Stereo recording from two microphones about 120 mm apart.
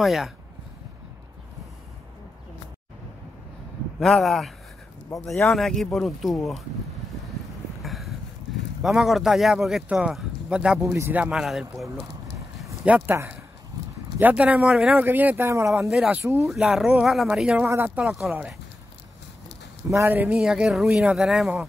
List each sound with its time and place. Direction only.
0.0 s speech: centre (ahead or behind)
4.0 s speech: centre (ahead or behind)
7.8 s boat: centre (ahead or behind)
8.8 s speech: centre (ahead or behind)
10.8 s speech: 20° right (ahead or behind); by 11.9 s centre (ahead or behind)
12.8 s speech: 10° right (ahead or behind)
13.1 s speech: 20° right (ahead or behind)
15.9 s speech: 5° right (ahead or behind)
16.2 s speech: 25° right (ahead or behind)
16.4 s speech: centre (ahead or behind)
17.6 s speech: 20° right (ahead or behind)
18.0 s speech: centre (ahead or behind)
19.9 s speech: 20° right (ahead or behind)
20.3 s speech: 5° right (ahead or behind)